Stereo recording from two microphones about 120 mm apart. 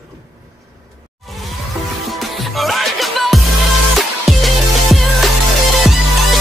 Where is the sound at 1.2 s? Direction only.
Centre (ahead or behind).